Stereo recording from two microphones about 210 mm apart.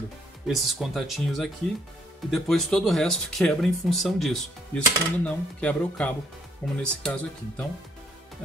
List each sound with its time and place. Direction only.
0.5 s speech: centre (ahead or behind)